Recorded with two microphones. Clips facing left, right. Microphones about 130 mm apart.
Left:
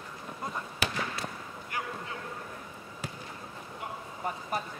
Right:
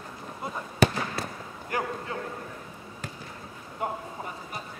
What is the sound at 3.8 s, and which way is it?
Speech, 45° right (ahead or behind).